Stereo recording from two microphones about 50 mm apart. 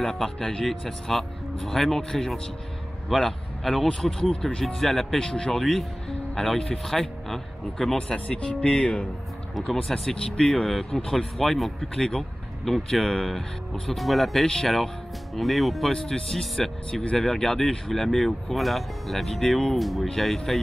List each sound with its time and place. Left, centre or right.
0.0 s speech: centre
5.2 s speech: centre
5.6 s speech: centre
8.1 s speech: left
9.8 s speech: centre
14.4 s speech: centre